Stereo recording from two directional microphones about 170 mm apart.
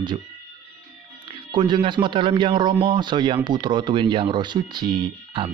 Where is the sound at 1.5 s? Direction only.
25° right (ahead or behind).